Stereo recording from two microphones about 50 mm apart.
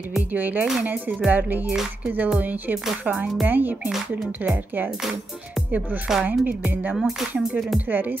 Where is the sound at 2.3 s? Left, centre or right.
Right.